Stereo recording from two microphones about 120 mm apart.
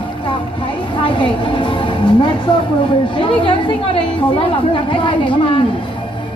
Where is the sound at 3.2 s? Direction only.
45° left (ahead or behind).